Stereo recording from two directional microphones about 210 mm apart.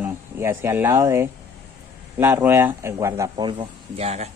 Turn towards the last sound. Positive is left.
turn(degrees=-30)  # may be behind; listen again after turning